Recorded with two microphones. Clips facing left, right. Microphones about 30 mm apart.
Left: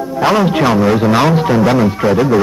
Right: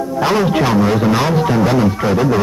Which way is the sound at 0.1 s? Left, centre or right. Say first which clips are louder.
Left 3 dB; centre.